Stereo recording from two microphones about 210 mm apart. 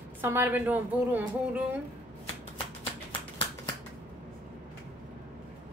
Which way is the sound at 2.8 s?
25° left (ahead or behind).